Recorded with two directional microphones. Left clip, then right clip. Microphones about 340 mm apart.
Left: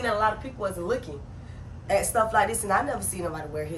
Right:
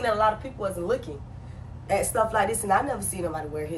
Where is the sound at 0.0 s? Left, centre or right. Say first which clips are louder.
Right 2 dB; centre.